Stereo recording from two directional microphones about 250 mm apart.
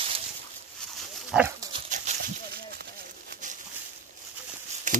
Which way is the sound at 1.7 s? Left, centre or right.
Right.